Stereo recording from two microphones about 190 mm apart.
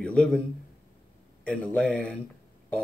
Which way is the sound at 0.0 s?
5° left (ahead or behind).